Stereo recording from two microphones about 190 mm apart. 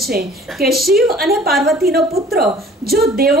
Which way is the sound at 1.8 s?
55° right (ahead or behind).